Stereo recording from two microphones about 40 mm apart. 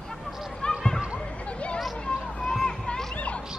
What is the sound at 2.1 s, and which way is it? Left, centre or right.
Children playing, left.